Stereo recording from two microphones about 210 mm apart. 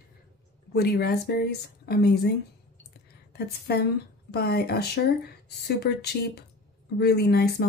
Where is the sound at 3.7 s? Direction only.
50° left (ahead or behind).